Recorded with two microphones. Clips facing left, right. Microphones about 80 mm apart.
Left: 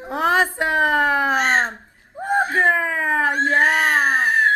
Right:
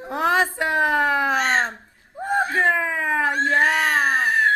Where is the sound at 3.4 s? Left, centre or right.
Left.